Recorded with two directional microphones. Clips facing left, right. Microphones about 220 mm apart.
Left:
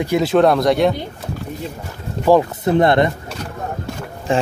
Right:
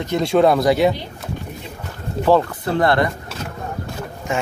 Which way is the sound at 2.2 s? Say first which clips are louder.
Left 2 dB; 15° left (ahead or behind).